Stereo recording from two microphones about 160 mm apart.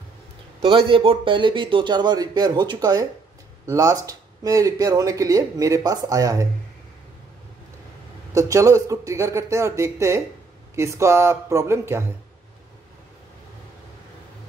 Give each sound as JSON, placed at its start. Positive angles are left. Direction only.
{"t": 0.7, "sound": "speech", "side_deg": -30}
{"t": 8.4, "sound": "speech", "side_deg": -20}